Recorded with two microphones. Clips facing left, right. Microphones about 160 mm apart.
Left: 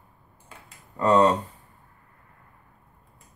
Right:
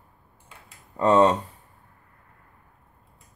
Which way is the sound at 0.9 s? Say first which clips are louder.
Right 1 dB; 25° right (ahead or behind).